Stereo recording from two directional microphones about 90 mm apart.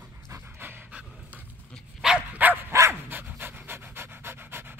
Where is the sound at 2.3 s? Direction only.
20° right (ahead or behind).